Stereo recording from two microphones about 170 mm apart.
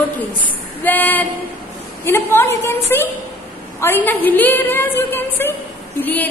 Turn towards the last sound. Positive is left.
turn(degrees=10)  # may be behind; listen again after turning